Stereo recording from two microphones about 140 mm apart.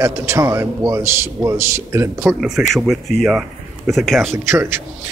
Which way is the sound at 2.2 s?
Centre (ahead or behind).